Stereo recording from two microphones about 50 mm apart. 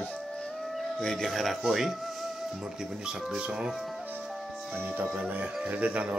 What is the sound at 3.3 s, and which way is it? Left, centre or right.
Speech, centre.